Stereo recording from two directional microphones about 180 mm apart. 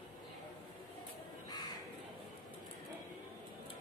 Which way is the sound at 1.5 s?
25° left (ahead or behind).